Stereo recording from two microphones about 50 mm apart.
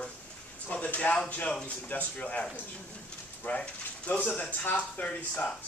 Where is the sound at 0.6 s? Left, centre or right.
Left.